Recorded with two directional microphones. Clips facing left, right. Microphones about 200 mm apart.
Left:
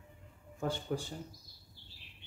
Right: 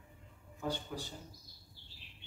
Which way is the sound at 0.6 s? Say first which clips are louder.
Left 4 dB; 50° left (ahead or behind).